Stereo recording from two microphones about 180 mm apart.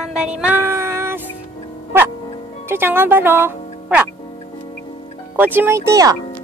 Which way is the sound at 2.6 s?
15° right (ahead or behind).